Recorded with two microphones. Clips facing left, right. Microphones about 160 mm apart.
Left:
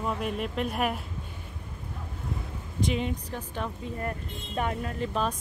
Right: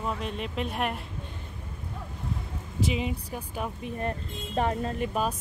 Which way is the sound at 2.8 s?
5° right (ahead or behind).